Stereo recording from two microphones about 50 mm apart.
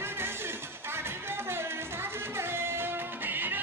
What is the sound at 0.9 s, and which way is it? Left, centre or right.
Music, right.